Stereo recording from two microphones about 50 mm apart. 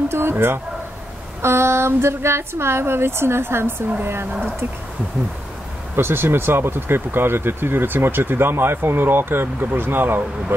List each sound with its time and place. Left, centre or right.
0.1 s a sound: right
1.4 s a woman's voice: right
5.9 s speech: right